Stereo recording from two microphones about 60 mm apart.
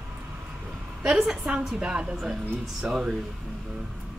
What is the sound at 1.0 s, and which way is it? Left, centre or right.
A woman's voice, centre.